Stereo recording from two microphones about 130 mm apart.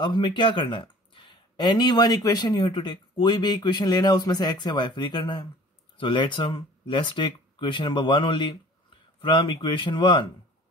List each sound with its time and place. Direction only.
0.0 s speech: 35° left (ahead or behind)